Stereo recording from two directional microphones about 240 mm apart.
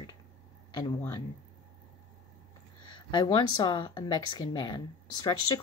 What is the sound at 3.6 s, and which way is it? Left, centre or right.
Speech, centre.